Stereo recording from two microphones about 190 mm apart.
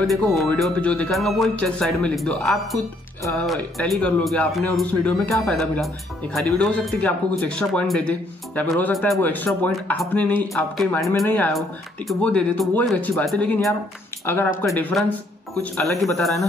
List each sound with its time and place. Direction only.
0.0 s speech: centre (ahead or behind)